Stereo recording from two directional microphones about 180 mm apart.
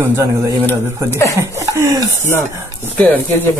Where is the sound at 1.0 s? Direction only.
15° left (ahead or behind).